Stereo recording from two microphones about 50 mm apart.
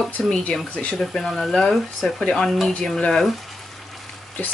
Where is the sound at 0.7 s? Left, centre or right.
Left.